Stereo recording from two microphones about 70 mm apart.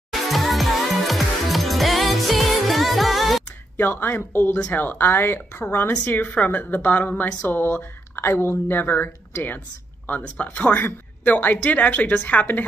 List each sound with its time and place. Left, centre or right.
0.3 s music: centre
3.7 s a woman's voice: left